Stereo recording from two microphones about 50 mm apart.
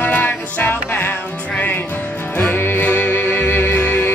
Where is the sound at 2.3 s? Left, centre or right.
Left.